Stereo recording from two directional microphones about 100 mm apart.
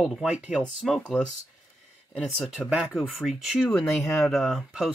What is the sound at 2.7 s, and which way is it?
Speech, 5° right (ahead or behind).